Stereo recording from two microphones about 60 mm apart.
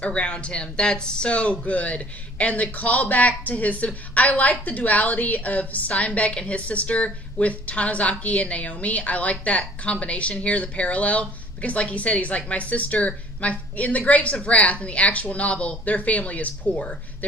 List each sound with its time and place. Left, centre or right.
0.0 s speech: centre